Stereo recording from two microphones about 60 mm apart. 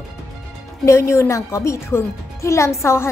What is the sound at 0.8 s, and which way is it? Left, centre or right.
A woman's voice, left.